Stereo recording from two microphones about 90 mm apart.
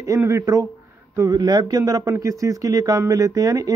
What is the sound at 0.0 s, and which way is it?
Speech, 35° right (ahead or behind).